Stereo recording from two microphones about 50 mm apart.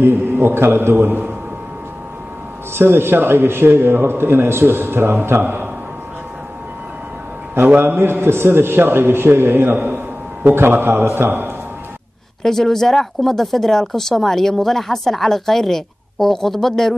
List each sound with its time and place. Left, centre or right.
0.0 s a man's voice: right
2.7 s a man's voice: right
7.7 s a man's voice: right
12.4 s speech: centre